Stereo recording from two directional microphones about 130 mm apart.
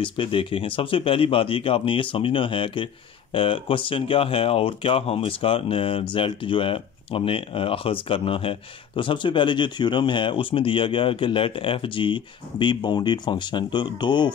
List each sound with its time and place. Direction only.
0.0 s speech: 40° left (ahead or behind)